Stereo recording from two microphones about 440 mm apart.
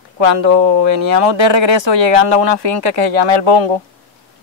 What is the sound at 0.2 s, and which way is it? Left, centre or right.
Speech, right.